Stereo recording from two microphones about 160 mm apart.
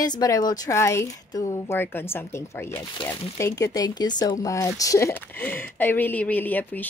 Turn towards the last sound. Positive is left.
turn(degrees=10)  # may be behind; listen again after turning